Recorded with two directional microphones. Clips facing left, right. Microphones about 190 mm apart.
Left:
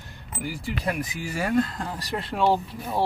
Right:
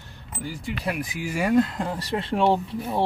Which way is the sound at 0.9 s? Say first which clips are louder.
Right 1 dB; 10° right (ahead or behind).